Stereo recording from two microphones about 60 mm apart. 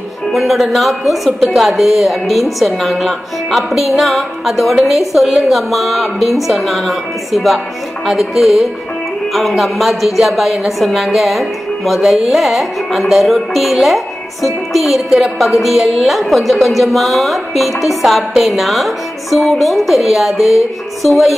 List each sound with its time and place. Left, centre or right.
0.3 s a woman's voice: centre